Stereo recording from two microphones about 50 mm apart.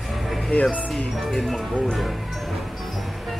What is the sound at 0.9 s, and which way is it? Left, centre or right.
Speech, centre.